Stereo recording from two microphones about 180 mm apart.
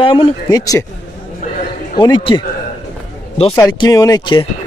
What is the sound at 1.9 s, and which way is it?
Speech, 25° left (ahead or behind).